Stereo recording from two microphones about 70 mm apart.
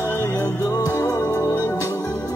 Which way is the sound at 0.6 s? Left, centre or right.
Left.